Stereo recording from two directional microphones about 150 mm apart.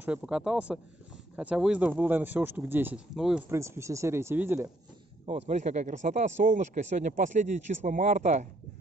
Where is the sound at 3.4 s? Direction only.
20° right (ahead or behind).